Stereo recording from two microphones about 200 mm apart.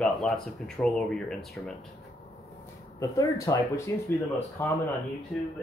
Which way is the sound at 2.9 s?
15° left (ahead or behind).